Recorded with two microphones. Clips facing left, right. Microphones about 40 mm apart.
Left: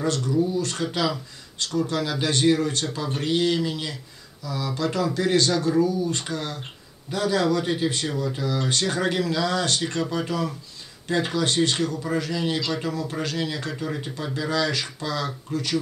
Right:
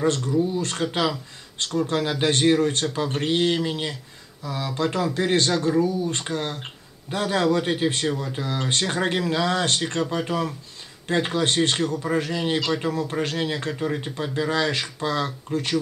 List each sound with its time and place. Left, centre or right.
0.2 s speech: right
0.6 s speech: right